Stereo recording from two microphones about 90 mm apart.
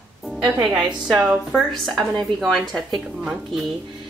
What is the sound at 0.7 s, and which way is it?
A woman's voice, 5° right (ahead or behind).